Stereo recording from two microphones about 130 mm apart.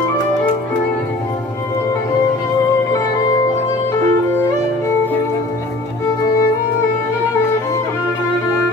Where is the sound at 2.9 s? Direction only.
25° left (ahead or behind).